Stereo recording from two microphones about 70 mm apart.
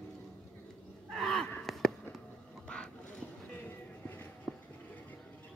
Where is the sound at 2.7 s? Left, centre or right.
Centre.